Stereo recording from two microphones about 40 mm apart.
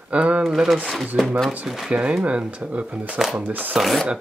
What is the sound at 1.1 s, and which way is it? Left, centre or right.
Speech, right.